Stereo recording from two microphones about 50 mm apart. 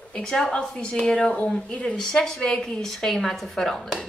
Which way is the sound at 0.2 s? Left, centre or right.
Centre.